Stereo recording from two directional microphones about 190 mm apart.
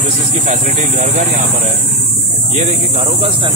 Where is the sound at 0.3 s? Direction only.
35° right (ahead or behind).